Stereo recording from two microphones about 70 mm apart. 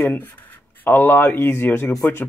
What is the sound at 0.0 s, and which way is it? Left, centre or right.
Speech, left.